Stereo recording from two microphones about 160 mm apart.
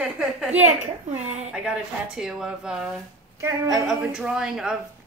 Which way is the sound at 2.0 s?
5° right (ahead or behind).